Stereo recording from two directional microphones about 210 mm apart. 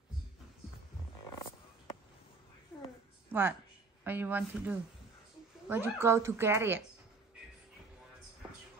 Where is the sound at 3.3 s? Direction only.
10° right (ahead or behind).